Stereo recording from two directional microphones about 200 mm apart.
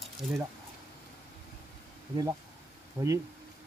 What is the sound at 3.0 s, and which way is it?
Speech, 25° right (ahead or behind).